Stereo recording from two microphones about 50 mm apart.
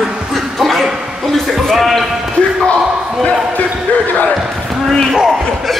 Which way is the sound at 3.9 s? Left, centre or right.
Left.